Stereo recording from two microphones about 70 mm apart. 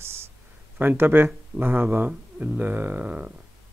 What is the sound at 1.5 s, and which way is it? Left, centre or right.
Speech, right.